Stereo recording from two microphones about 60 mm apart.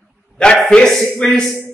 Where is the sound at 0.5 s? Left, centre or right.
Centre.